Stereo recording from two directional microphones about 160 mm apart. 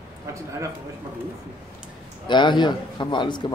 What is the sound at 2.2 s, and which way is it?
Speech, 30° left (ahead or behind).